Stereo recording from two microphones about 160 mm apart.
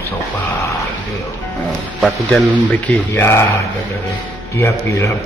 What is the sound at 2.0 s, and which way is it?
Speech, 5° left (ahead or behind).